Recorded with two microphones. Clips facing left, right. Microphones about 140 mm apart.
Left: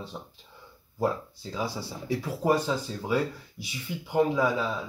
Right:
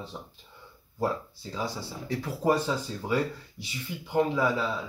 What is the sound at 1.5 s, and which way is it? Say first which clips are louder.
Speech: left 1 dB; 10° left (ahead or behind).